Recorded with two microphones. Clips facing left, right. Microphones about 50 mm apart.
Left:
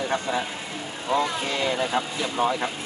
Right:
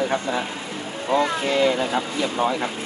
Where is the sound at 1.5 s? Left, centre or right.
Centre.